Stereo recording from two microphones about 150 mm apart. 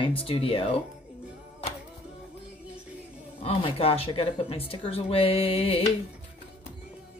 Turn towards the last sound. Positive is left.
turn(degrees=40)  # may be behind; listen again after turning